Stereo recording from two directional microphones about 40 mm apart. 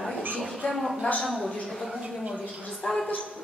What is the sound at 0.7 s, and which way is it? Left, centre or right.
Speech, centre.